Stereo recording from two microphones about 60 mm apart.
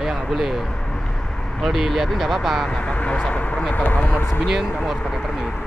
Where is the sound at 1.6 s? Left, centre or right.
Centre.